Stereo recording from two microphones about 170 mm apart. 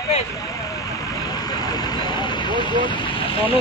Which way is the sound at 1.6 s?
25° left (ahead or behind).